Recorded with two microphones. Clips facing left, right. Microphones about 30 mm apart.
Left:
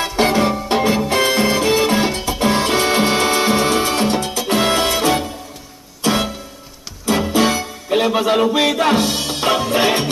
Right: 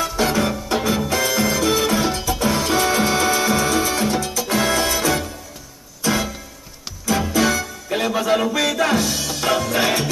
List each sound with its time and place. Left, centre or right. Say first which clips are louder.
0.0 s music: left 4 dB; left